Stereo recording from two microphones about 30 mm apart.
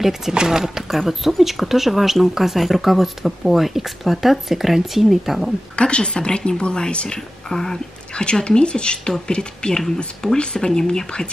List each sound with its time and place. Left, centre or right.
0.5 s speech: centre
0.8 s speech: centre
5.8 s a woman's voice: left
7.2 s speech: centre
8.1 s speech: left